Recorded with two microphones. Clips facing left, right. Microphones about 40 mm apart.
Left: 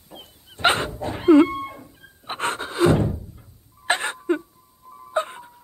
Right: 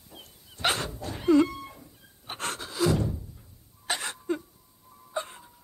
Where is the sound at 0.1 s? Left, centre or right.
Left.